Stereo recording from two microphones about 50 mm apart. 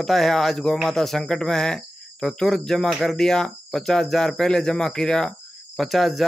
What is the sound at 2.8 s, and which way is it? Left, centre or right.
Speech, centre.